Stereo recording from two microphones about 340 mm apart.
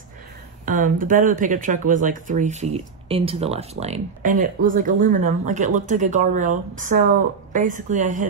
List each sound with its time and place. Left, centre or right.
0.7 s speech: right